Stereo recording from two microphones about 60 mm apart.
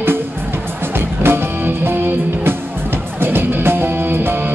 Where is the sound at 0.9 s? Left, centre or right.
Right.